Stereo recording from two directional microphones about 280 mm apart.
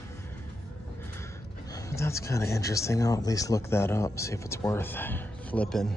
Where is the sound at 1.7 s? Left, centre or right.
Centre.